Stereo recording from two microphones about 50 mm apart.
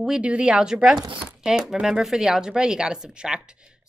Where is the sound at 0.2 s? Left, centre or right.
Right.